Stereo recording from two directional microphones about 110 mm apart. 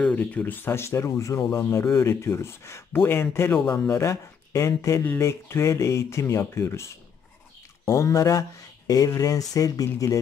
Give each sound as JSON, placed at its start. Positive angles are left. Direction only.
{"t": 0.0, "sound": "speech", "side_deg": 10}